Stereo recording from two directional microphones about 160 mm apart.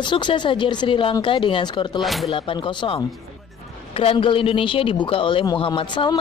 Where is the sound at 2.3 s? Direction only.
30° left (ahead or behind).